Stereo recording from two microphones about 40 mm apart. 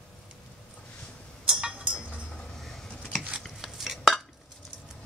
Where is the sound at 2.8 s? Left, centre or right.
Left.